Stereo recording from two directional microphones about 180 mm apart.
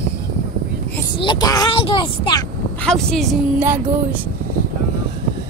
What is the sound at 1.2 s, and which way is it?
Speech, 25° left (ahead or behind).